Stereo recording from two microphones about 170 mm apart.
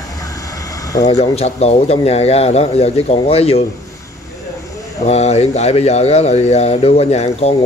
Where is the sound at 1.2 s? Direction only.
40° left (ahead or behind).